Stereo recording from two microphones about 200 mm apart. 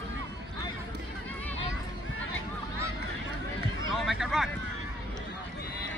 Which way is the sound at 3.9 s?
Centre (ahead or behind).